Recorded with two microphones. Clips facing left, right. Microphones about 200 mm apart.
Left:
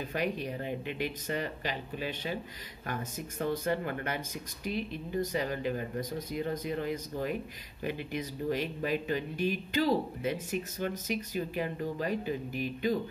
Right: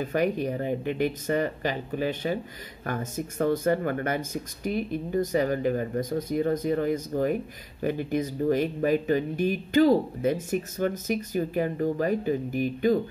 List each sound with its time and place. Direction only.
0.1 s speech: 45° right (ahead or behind)